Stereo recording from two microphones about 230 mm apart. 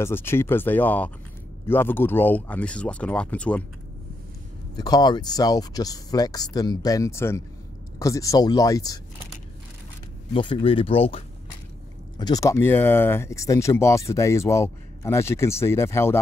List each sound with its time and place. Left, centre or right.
0.0 s speech: centre
4.7 s speech: centre
10.3 s speech: left